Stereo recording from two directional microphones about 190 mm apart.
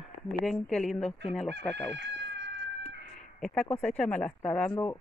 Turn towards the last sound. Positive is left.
turn(degrees=5)  # may be behind; listen again after turning